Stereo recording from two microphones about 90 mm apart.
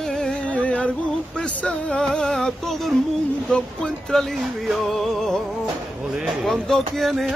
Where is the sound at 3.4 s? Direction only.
5° left (ahead or behind).